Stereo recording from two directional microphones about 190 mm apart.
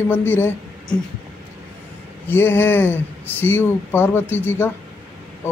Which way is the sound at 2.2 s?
10° left (ahead or behind).